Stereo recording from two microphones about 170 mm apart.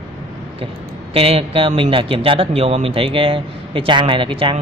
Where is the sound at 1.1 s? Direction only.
35° right (ahead or behind).